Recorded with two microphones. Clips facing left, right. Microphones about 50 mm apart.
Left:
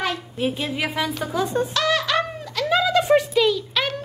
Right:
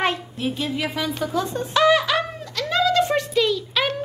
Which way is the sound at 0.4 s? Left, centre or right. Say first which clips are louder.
Left 3 dB; centre.